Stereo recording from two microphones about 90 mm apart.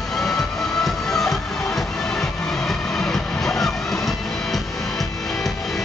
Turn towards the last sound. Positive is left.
turn(degrees=5)  # may be behind; listen again after turning